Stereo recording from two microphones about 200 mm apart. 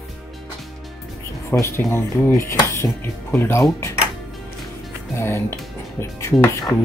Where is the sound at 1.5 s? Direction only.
10° left (ahead or behind).